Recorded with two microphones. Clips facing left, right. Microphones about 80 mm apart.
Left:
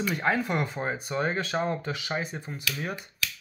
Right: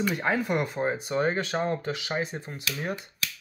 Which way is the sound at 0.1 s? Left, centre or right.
Centre.